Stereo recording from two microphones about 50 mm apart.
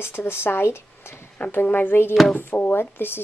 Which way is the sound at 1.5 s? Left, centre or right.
Left.